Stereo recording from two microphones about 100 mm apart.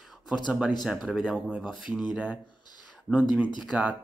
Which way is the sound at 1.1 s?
5° right (ahead or behind).